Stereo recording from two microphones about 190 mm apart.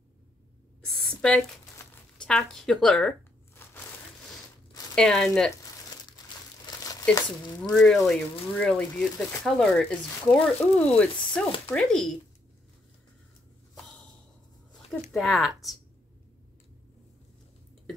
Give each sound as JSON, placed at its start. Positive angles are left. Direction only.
{"t": 0.8, "sound": "a sound", "side_deg": 5}
{"t": 2.1, "sound": "speech", "side_deg": 5}
{"t": 3.6, "sound": "crushing", "side_deg": 10}
{"t": 4.9, "sound": "speech", "side_deg": 5}
{"t": 6.0, "sound": "crumpling", "side_deg": 20}
{"t": 7.2, "sound": "speech", "side_deg": 20}
{"t": 7.7, "sound": "speech", "side_deg": 5}
{"t": 14.9, "sound": "speech", "side_deg": 0}